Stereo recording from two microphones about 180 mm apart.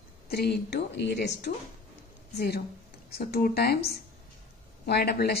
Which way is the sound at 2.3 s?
65° left (ahead or behind).